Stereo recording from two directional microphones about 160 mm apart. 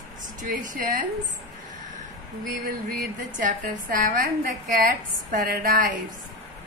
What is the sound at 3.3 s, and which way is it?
A woman's voice, 55° right (ahead or behind).